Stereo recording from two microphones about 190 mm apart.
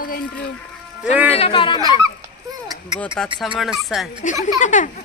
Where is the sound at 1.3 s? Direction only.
30° left (ahead or behind).